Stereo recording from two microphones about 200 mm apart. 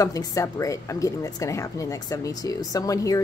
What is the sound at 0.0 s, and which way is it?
A woman's voice, 15° left (ahead or behind).